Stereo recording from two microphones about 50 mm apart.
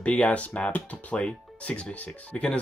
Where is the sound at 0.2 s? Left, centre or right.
Left.